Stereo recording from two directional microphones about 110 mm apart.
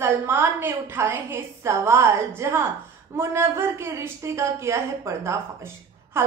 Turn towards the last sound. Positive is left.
turn(degrees=-25)  # may be behind; listen again after turning